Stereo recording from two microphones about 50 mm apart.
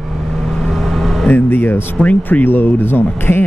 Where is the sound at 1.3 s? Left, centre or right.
Left.